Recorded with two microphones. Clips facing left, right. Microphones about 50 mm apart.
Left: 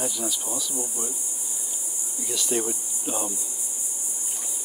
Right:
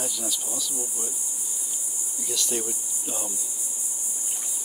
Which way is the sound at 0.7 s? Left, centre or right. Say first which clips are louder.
Left 3 dB; left.